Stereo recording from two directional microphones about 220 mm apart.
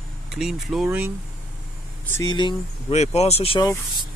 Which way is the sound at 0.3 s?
Centre (ahead or behind).